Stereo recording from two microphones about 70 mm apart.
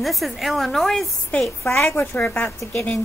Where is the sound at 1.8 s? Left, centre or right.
Left.